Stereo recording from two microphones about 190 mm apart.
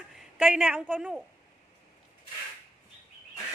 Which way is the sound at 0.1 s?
5° right (ahead or behind).